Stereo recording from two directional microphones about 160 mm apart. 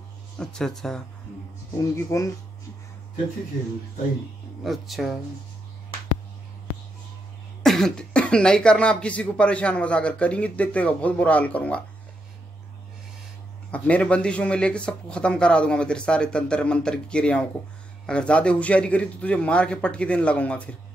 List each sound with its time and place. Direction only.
0.4 s speech: 5° left (ahead or behind)
2.0 s speech: 20° left (ahead or behind)
4.6 s speech: centre (ahead or behind)
7.6 s speech: centre (ahead or behind)
13.7 s speech: 10° left (ahead or behind)